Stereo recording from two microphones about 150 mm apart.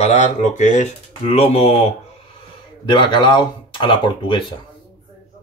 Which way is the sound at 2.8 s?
30° left (ahead or behind).